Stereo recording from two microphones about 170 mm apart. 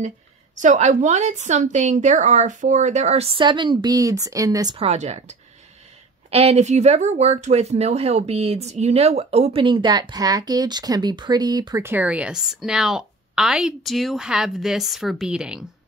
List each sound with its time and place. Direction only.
0.6 s a woman's voice: 45° right (ahead or behind); by 4.7 s 20° right (ahead or behind)
4.7 s speech: 40° right (ahead or behind); by 15.6 s 5° right (ahead or behind)